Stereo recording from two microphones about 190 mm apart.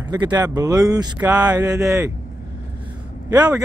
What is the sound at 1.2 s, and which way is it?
Speech, 10° right (ahead or behind).